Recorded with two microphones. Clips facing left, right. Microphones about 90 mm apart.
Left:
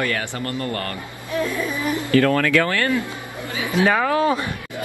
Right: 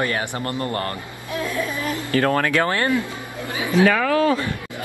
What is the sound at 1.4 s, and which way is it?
Speech, 15° right (ahead or behind).